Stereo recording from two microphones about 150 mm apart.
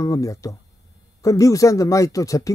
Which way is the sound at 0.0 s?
20° left (ahead or behind).